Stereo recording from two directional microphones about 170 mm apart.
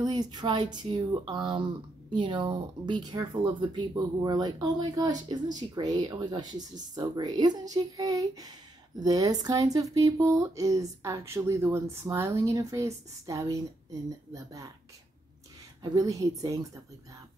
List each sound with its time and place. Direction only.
0.0 s speech: 25° right (ahead or behind)
15.8 s speech: 20° right (ahead or behind)